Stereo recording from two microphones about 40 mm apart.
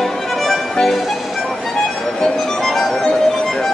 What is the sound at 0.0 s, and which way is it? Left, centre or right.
Music, centre.